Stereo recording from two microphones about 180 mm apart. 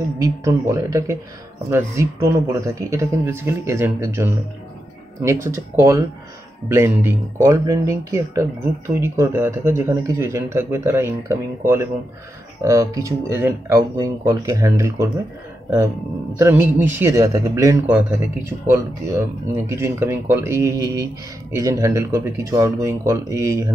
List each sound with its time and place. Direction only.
0.2 s a man's voice: 15° right (ahead or behind)
16.3 s a man's voice: 15° right (ahead or behind)